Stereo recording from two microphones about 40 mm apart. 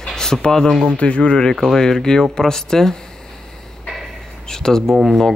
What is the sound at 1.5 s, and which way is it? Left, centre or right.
Speech, centre.